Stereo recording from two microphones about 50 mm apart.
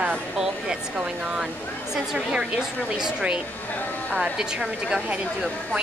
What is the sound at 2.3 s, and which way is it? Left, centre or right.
Speech, centre.